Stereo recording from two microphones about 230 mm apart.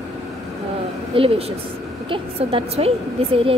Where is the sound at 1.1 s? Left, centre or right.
Right.